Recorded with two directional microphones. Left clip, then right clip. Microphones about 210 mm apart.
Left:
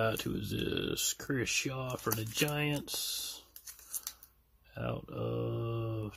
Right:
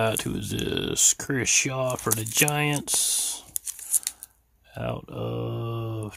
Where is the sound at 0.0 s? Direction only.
30° right (ahead or behind).